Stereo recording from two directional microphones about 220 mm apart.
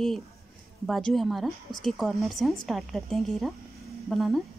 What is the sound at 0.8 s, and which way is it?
Speech, centre (ahead or behind).